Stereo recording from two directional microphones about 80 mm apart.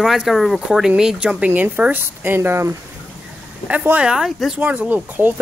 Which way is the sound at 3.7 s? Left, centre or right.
Right.